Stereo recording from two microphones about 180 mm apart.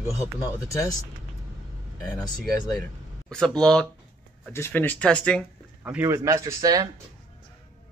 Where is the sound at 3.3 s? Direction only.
5° left (ahead or behind).